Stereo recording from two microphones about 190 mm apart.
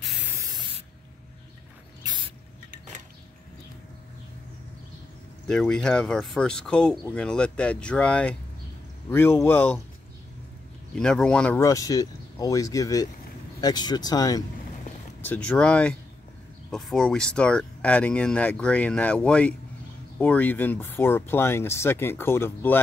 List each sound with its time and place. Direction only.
0.0 s spray: centre (ahead or behind)
0.5 s spray: 25° right (ahead or behind)
5.5 s speech: 5° left (ahead or behind)
11.0 s speech: 5° left (ahead or behind)
11.6 s speech: 15° left (ahead or behind)
15.2 s speech: 5° left (ahead or behind)